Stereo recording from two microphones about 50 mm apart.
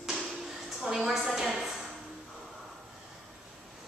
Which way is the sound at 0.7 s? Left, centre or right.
Centre.